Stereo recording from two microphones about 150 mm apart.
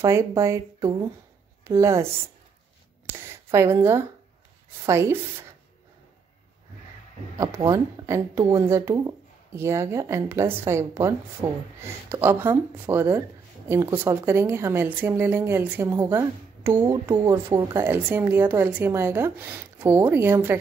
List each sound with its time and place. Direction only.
0.0 s a woman's voice: 20° right (ahead or behind)
7.5 s speech: 20° right (ahead or behind)